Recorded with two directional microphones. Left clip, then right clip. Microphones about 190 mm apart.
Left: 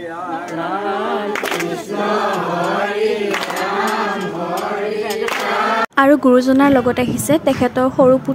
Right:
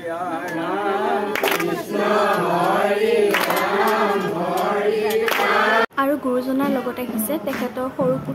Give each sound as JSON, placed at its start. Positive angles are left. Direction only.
{"t": 5.9, "sound": "speech", "side_deg": 35}